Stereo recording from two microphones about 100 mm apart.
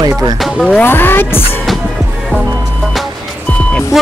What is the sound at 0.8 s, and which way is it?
Speech, 20° left (ahead or behind).